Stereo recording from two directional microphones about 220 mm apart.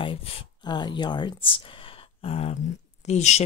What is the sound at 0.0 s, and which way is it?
A woman's voice, 25° left (ahead or behind).